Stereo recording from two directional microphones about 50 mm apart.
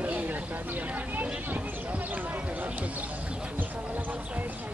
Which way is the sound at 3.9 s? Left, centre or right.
Right.